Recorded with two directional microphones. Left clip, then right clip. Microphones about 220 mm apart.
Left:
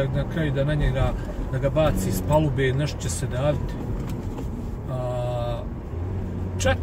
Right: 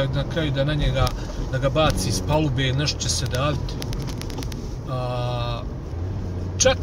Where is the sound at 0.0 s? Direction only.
30° right (ahead or behind).